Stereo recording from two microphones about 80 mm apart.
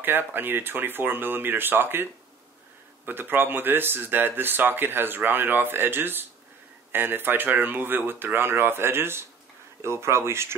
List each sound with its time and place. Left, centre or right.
0.0 s speech: right
3.1 s speech: right